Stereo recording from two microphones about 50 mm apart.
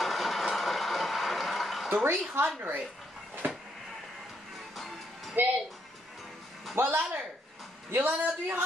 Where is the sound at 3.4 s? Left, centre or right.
Right.